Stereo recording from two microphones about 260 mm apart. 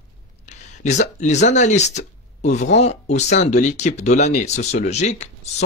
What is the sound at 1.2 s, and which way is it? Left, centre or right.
Speech, left.